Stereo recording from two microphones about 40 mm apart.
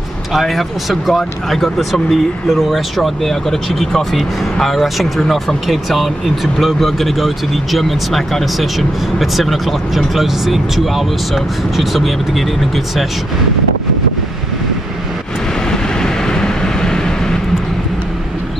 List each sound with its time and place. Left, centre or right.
0.3 s speech: centre
15.7 s vehicle: centre